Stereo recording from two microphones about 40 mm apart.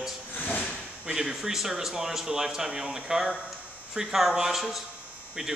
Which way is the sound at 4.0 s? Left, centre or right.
Centre.